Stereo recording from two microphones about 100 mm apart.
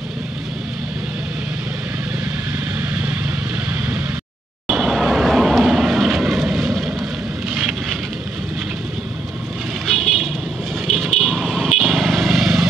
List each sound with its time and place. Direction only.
2.8 s vehicle: 15° right (ahead or behind)
4.6 s vehicle: 5° right (ahead or behind)
9.8 s vehicle: centre (ahead or behind)